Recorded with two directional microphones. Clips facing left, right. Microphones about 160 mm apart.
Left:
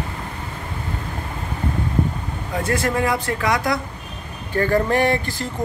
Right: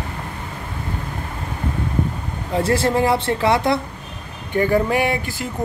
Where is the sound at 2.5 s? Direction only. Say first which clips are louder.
Right 4 dB; 30° right (ahead or behind).